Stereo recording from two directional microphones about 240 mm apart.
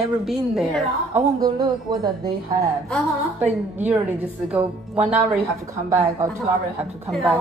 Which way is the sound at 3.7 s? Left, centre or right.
Centre.